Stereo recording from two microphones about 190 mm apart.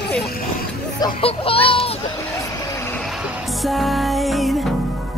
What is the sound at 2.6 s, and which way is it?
Vehicle, 15° left (ahead or behind).